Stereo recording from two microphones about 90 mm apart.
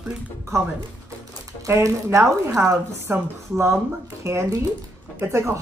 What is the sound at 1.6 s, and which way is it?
Speech, 35° right (ahead or behind).